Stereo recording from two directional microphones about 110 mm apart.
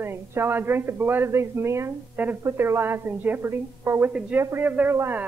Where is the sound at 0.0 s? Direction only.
20° right (ahead or behind).